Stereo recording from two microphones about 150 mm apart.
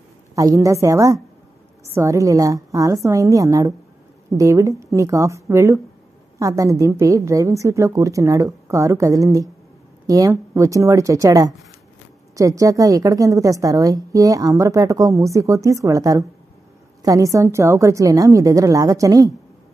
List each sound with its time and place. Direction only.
0.4 s a woman's voice: 20° right (ahead or behind)